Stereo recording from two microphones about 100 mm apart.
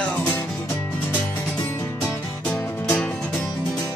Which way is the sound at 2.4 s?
10° left (ahead or behind).